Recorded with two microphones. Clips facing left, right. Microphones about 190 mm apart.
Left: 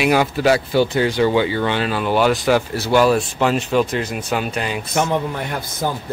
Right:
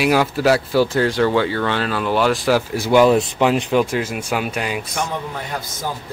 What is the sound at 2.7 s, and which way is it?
Speech, 15° right (ahead or behind).